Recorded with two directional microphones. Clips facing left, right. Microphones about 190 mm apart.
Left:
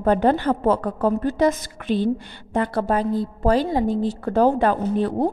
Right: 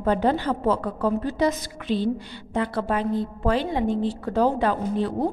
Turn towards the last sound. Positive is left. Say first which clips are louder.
# left 3 dB
turn(degrees=50)  # may be behind; listen again after turning